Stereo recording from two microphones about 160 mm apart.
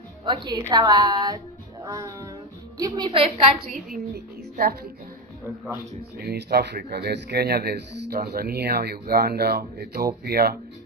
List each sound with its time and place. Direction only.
0.2 s a woman's voice: 30° right (ahead or behind)
3.9 s a woman's voice: 70° right (ahead or behind)
6.1 s a woman's voice: 85° right